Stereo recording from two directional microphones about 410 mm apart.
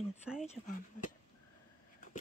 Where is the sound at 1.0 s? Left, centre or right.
Centre.